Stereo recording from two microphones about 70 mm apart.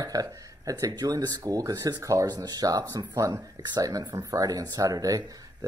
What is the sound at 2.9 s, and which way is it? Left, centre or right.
Speech, right.